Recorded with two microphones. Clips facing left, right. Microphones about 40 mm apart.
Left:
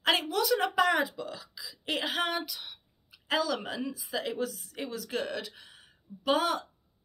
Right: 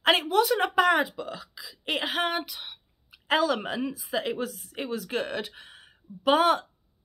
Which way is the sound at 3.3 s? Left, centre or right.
Right.